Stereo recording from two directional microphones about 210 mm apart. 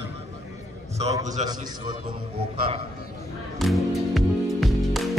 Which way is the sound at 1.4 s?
35° right (ahead or behind).